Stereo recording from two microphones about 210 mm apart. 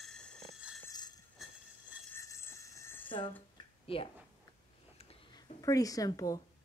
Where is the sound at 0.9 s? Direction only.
20° left (ahead or behind).